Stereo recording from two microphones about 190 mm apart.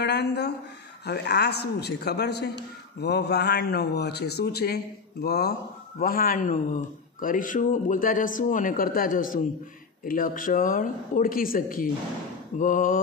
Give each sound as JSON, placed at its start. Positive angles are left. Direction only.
{"t": 0.0, "sound": "speech", "side_deg": 60}